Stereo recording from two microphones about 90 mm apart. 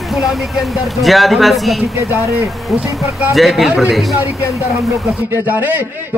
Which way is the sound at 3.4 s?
Centre (ahead or behind).